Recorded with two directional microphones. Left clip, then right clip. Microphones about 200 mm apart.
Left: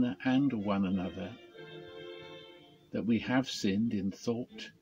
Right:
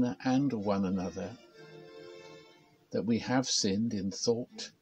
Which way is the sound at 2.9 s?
15° right (ahead or behind).